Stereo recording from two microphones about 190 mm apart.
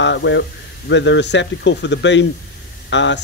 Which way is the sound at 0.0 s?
70° left (ahead or behind).